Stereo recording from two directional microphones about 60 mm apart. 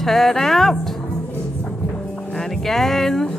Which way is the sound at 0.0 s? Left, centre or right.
Centre.